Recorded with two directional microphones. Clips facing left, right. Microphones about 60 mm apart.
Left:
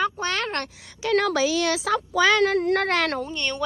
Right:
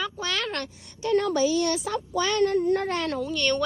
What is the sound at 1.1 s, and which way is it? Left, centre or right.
Speech, left.